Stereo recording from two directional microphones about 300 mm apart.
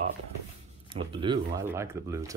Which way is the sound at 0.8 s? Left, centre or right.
Centre.